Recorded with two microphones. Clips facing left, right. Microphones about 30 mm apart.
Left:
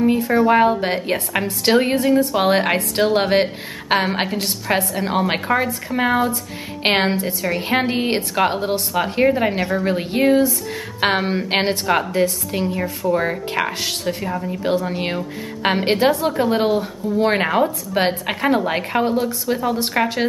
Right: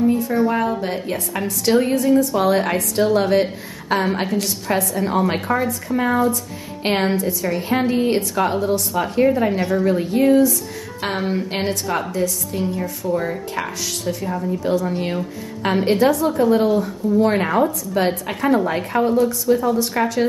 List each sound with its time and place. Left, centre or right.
0.0 s a sound: left
0.5 s a woman's voice: left
17.9 s speech: left